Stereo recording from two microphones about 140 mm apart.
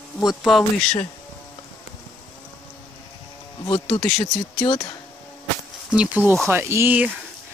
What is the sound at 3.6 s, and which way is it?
Speech, 30° left (ahead or behind).